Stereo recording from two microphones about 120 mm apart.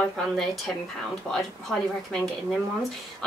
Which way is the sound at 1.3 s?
5° left (ahead or behind).